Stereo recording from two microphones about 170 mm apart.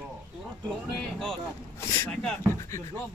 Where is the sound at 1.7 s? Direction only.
15° left (ahead or behind).